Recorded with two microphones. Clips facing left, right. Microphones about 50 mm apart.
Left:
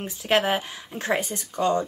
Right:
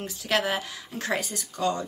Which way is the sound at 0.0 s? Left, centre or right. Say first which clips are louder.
Left 4 dB; left.